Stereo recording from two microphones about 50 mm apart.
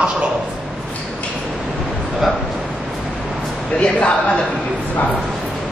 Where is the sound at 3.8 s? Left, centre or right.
Left.